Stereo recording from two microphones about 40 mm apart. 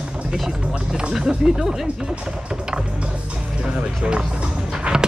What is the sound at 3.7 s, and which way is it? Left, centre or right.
Music, right.